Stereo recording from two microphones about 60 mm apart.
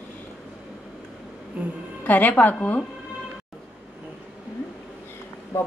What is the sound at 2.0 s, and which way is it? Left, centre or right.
Speech, left.